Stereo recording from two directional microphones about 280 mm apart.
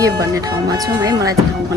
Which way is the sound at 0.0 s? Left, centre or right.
Centre.